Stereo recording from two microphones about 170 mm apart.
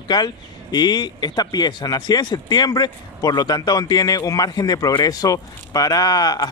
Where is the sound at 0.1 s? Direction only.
25° left (ahead or behind).